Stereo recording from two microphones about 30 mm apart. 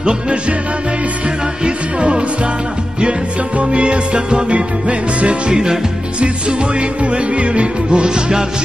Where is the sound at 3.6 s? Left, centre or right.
Right.